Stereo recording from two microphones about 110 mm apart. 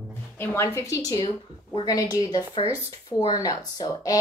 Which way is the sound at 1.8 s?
35° left (ahead or behind).